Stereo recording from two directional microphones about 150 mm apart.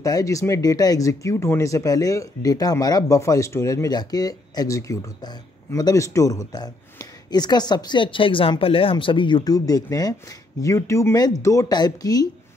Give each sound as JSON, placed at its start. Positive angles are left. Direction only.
{"t": 0.0, "sound": "speech", "side_deg": 25}